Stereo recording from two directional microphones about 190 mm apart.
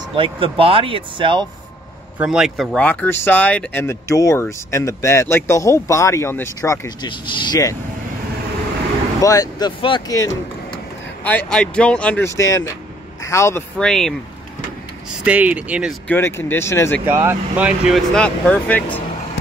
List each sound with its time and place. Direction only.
0.1 s speech: 30° right (ahead or behind)
2.1 s speech: 5° right (ahead or behind); by 7.7 s 20° left (ahead or behind)
9.2 s speech: 20° left (ahead or behind)
11.2 s speech: 5° left (ahead or behind)
13.7 s speech: centre (ahead or behind)
15.2 s speech: 5° right (ahead or behind)
16.1 s speech: 15° left (ahead or behind)
17.0 s speech: 10° right (ahead or behind); by 18.9 s 5° left (ahead or behind)